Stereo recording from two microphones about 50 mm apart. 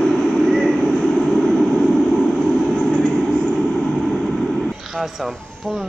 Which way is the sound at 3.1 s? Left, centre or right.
Centre.